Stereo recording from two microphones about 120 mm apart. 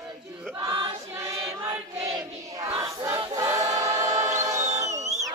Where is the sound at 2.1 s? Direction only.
30° right (ahead or behind).